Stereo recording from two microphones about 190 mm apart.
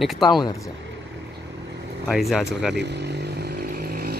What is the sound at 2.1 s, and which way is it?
Speech, centre (ahead or behind).